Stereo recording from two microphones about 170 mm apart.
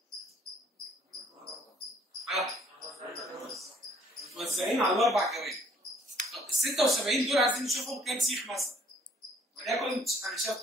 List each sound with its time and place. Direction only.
2.2 s cricket: centre (ahead or behind)
4.3 s speech: centre (ahead or behind)
9.7 s speech: centre (ahead or behind)